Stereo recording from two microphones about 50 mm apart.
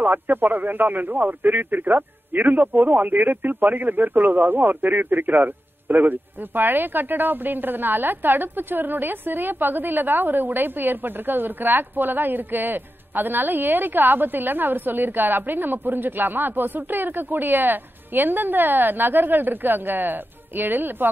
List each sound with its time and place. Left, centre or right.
0.0 s speech: right